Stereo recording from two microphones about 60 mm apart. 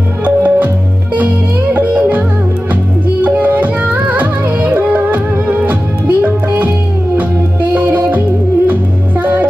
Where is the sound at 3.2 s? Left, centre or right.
Right.